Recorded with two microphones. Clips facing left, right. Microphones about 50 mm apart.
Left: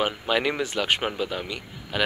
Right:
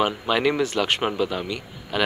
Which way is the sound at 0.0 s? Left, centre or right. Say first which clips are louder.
Right 3 dB; centre.